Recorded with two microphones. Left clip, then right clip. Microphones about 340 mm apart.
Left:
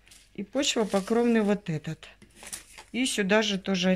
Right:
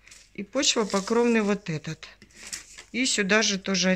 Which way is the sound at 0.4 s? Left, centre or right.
Centre.